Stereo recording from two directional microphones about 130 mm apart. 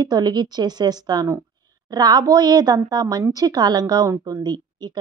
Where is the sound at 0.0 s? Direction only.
35° right (ahead or behind).